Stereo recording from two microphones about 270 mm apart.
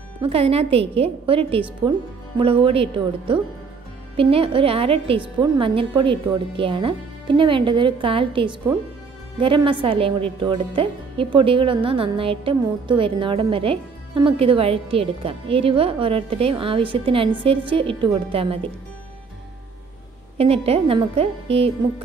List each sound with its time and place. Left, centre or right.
0.2 s a woman's voice: right
20.3 s a woman's voice: right